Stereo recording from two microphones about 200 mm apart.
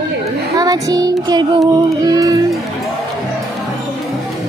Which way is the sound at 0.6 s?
20° right (ahead or behind).